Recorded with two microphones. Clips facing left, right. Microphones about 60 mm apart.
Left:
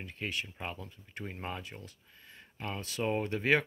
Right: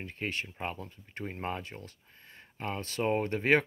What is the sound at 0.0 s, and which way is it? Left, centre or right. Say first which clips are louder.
Speech: right 2 dB; right.